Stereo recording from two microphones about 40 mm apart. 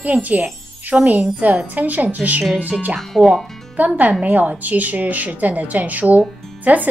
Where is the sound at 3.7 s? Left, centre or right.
Right.